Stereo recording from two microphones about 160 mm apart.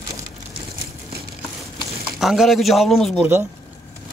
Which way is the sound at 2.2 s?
Centre (ahead or behind).